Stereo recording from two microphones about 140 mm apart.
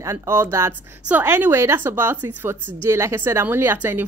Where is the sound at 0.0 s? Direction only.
20° right (ahead or behind).